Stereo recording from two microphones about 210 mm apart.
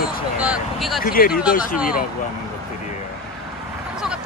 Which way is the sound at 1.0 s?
45° left (ahead or behind).